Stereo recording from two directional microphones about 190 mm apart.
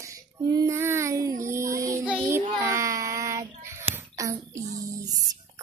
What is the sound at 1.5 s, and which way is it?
Music, 15° right (ahead or behind).